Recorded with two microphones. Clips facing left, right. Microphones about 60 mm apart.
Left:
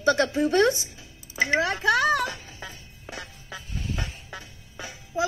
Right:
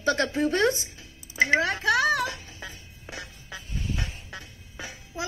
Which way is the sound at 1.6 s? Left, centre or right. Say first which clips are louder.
Left 1 dB; centre.